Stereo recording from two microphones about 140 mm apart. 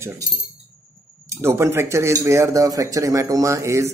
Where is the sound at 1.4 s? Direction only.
20° right (ahead or behind).